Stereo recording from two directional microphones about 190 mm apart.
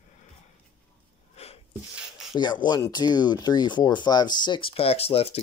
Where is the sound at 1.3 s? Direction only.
35° left (ahead or behind).